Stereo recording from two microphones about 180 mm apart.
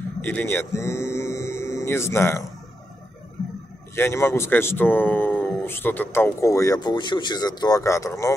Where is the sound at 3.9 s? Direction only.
15° left (ahead or behind).